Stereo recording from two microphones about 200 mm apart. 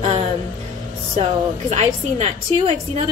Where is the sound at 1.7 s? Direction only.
30° right (ahead or behind).